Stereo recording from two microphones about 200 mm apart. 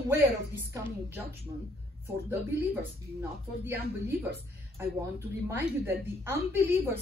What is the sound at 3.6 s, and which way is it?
Speech, 10° right (ahead or behind).